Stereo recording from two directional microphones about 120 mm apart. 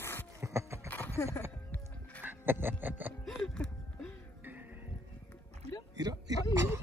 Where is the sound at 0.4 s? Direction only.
25° right (ahead or behind).